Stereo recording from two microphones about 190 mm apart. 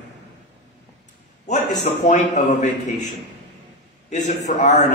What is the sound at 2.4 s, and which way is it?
Speech, 35° left (ahead or behind).